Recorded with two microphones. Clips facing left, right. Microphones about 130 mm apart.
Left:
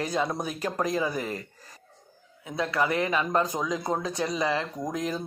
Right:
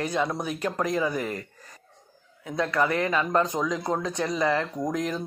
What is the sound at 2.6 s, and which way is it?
Speech, 20° left (ahead or behind).